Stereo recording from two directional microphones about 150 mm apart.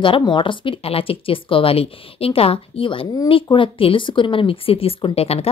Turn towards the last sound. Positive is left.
turn(degrees=40)  # may be behind; listen again after turning